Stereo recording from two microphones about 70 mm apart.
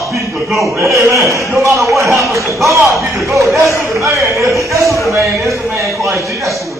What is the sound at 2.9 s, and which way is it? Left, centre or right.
Speech, right.